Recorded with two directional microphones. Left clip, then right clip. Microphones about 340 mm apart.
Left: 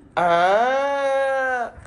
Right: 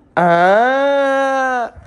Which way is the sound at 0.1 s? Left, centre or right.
Right.